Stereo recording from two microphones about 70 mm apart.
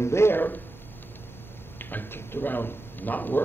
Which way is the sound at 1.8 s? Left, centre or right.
Left.